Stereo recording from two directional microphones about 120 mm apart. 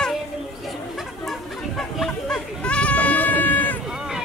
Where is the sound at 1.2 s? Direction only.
Centre (ahead or behind).